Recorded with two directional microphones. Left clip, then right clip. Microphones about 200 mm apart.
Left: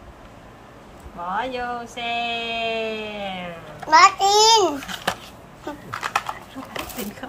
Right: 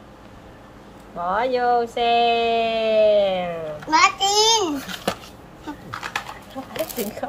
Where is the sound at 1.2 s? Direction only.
30° right (ahead or behind).